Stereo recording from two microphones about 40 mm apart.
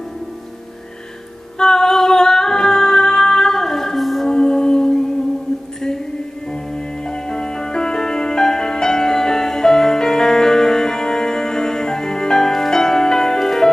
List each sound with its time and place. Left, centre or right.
1.6 s music: centre
4.3 s music: centre
6.5 s music: centre